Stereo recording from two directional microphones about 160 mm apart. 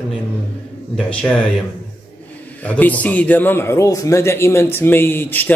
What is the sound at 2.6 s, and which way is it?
A man's voice, 10° left (ahead or behind).